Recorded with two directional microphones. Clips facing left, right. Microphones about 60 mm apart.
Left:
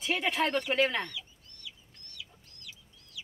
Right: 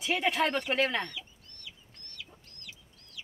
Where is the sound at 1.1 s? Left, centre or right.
Right.